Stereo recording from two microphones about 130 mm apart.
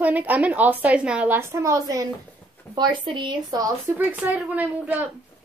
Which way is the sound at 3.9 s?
15° right (ahead or behind).